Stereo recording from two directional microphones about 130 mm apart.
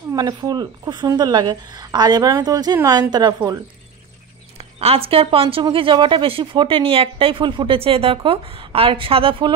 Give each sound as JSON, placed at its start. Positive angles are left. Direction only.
{"t": 0.1, "sound": "a woman's voice", "side_deg": -30}
{"t": 4.7, "sound": "a woman's voice", "side_deg": -50}